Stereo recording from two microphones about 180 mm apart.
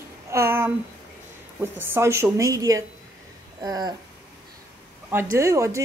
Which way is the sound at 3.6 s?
20° right (ahead or behind).